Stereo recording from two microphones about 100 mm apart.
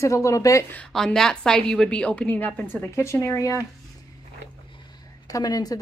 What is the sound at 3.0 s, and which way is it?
Speech, 30° left (ahead or behind).